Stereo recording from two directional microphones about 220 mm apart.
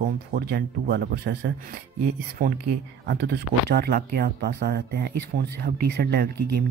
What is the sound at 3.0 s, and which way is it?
Speech, 50° right (ahead or behind).